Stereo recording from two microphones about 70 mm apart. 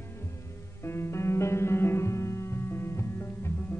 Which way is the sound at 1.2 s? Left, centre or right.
Left.